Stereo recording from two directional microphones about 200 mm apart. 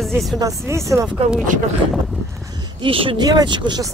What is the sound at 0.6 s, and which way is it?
Speech, 15° right (ahead or behind).